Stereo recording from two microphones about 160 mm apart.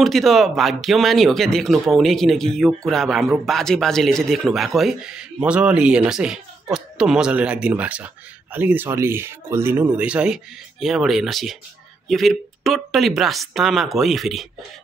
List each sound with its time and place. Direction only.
0.0 s speech: centre (ahead or behind)